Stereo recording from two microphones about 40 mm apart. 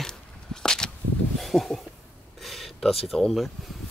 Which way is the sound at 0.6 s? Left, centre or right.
Centre.